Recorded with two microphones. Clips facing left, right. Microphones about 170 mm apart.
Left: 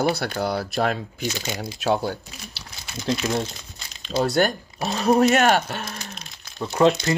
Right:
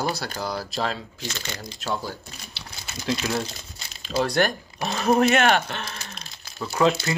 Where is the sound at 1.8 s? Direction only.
70° left (ahead or behind).